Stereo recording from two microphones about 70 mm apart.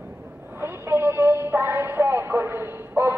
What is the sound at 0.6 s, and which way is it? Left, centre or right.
Music, right.